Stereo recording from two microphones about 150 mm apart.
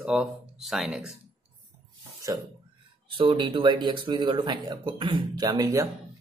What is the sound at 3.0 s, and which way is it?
A man's voice, 35° right (ahead or behind).